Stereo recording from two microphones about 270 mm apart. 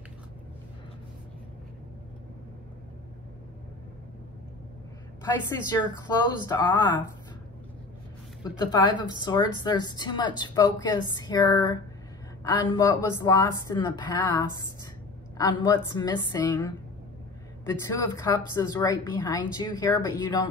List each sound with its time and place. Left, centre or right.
5.5 s a woman's voice: centre
8.5 s a woman's voice: centre